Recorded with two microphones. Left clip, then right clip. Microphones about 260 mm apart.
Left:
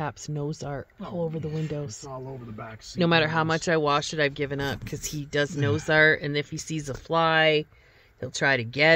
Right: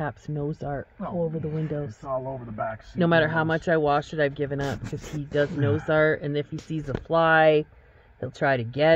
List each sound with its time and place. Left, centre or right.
0.0 s speech: left
3.0 s speech: left